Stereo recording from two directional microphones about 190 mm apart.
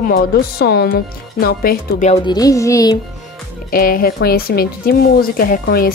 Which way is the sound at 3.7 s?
50° left (ahead or behind).